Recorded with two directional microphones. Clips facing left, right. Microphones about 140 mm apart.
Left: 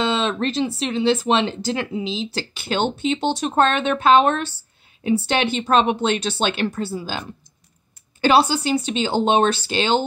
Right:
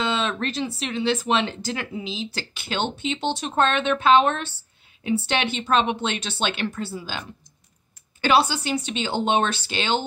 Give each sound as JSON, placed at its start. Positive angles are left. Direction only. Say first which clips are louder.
{"t": 0.0, "sound": "speech", "louder": "left 4 dB", "side_deg": 30}